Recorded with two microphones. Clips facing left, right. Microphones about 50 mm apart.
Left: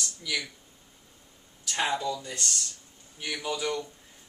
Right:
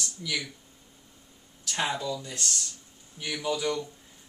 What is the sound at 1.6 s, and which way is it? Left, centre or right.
Speech, centre.